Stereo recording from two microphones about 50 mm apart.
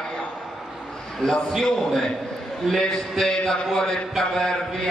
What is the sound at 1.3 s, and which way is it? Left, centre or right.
A man's voice, centre.